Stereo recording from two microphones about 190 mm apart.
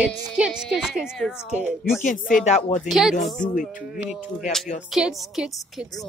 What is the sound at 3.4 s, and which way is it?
Speech, 45° left (ahead or behind).